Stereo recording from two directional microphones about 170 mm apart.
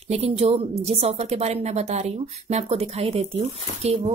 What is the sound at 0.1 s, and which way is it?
Speech, 40° right (ahead or behind).